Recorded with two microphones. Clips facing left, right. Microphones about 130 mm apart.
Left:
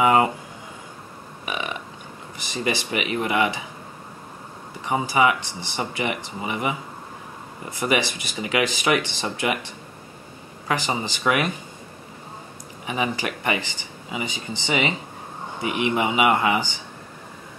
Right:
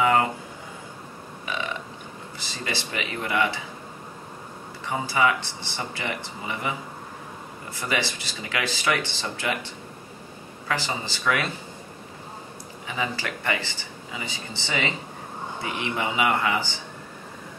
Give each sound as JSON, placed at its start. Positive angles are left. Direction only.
{"t": 0.0, "sound": "speech", "side_deg": 20}
{"t": 1.4, "sound": "burping", "side_deg": 15}
{"t": 2.3, "sound": "speech", "side_deg": 15}
{"t": 4.8, "sound": "speech", "side_deg": 15}
{"t": 7.8, "sound": "speech", "side_deg": 15}
{"t": 10.7, "sound": "speech", "side_deg": 15}
{"t": 12.8, "sound": "speech", "side_deg": 20}